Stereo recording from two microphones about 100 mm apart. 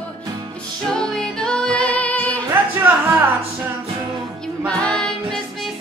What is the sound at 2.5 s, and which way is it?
Music, 20° right (ahead or behind).